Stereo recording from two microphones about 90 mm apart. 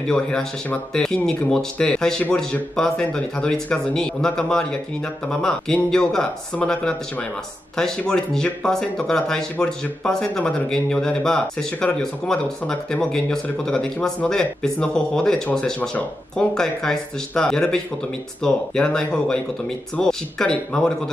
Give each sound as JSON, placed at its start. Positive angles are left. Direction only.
{"t": 0.1, "sound": "speech", "side_deg": 10}